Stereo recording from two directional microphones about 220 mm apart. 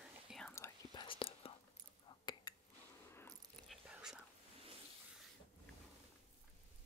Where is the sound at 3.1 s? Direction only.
10° left (ahead or behind).